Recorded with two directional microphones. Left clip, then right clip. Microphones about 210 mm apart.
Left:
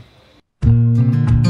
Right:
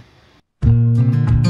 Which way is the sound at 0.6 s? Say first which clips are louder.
Left 1 dB; centre (ahead or behind).